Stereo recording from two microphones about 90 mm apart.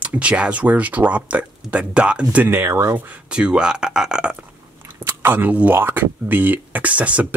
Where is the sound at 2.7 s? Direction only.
30° right (ahead or behind).